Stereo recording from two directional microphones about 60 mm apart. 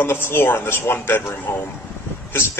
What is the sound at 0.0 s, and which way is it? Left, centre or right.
Speech, left.